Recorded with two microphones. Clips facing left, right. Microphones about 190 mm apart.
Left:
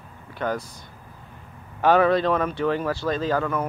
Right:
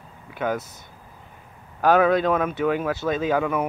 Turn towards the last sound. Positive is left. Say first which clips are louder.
# right 2 dB
turn(degrees=-10)  # may be behind; listen again after turning